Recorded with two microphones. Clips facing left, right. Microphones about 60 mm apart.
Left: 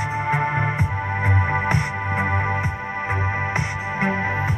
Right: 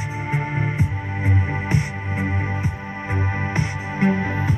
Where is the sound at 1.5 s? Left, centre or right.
Left.